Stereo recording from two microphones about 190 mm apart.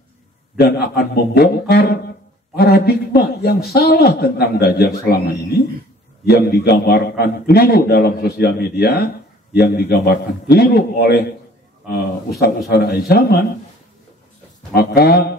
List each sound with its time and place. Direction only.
0.6 s a man's voice: 55° left (ahead or behind)
14.7 s a man's voice: 55° left (ahead or behind)